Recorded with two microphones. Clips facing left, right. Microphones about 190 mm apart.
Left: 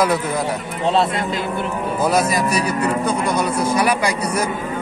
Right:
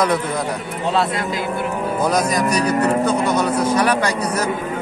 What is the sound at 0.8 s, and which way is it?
Speech, 25° left (ahead or behind).